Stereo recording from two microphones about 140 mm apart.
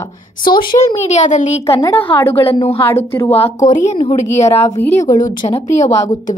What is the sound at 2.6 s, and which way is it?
Speech, 45° left (ahead or behind).